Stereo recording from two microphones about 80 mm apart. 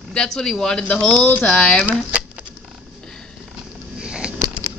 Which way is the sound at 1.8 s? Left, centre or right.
Centre.